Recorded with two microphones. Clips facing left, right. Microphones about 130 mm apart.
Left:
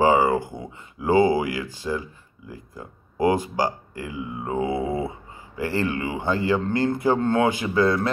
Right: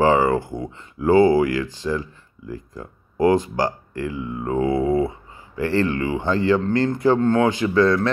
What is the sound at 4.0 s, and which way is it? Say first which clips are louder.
Speech: right 5 dB; 15° left (ahead or behind).